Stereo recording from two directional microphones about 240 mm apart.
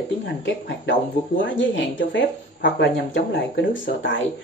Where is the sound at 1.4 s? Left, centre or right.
Left.